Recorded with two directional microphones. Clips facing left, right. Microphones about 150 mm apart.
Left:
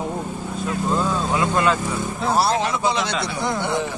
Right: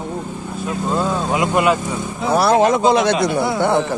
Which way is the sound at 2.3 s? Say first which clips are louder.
Right 7 dB; 55° right (ahead or behind).